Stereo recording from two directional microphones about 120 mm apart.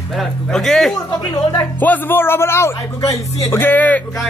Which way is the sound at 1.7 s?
15° left (ahead or behind).